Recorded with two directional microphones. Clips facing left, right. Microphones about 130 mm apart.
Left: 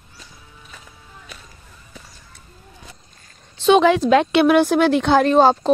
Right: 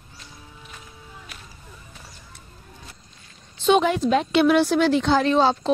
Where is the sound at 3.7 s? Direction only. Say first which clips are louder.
Left 5 dB; 90° left; by 5.7 s 50° left (ahead or behind).